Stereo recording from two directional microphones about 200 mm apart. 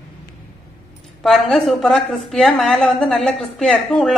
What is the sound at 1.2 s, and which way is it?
Speech, centre (ahead or behind).